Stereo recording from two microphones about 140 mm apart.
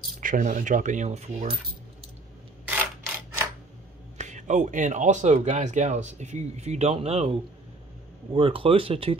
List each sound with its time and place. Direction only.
0.2 s speech: 65° right (ahead or behind)
4.2 s speech: 60° right (ahead or behind); by 9.1 s 40° right (ahead or behind)